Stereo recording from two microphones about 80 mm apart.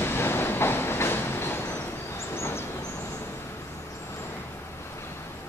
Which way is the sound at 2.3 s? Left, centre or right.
Left.